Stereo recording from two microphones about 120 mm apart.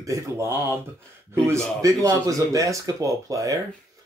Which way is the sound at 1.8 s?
25° right (ahead or behind).